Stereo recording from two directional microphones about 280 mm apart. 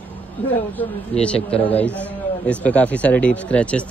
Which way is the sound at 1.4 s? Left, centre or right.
Left.